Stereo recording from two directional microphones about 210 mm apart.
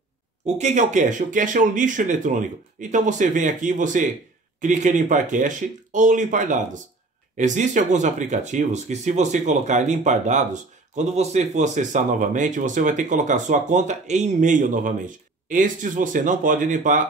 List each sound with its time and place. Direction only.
0.6 s speech: 35° right (ahead or behind)